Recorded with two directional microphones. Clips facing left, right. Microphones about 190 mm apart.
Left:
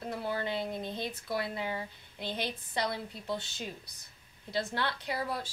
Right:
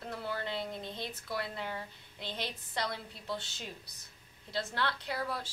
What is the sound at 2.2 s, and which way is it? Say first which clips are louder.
A woman's voice: left 4 dB; 10° left (ahead or behind).